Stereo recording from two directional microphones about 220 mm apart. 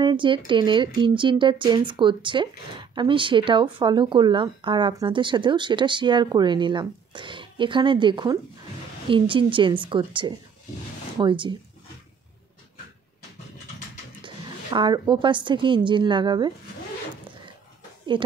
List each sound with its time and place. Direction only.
0.0 s speech: 20° right (ahead or behind)
14.2 s a woman's voice: 20° right (ahead or behind)
18.1 s speech: 20° right (ahead or behind)